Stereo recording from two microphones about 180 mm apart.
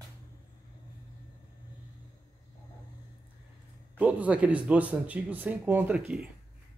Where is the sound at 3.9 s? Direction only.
10° right (ahead or behind).